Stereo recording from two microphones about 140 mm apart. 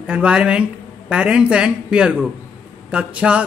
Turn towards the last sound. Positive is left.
turn(degrees=-10)  # may be behind; listen again after turning